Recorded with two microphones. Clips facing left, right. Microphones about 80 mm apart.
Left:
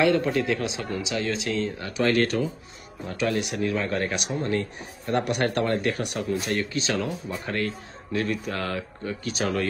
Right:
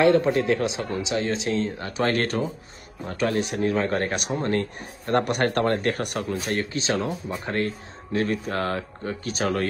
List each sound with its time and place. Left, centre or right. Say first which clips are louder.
0.0 s speech: right 3 dB; right